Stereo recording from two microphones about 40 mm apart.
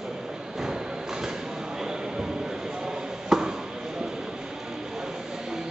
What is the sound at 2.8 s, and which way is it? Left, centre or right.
Chop, centre.